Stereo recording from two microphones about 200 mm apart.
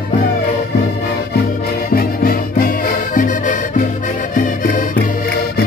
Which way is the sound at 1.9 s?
45° left (ahead or behind).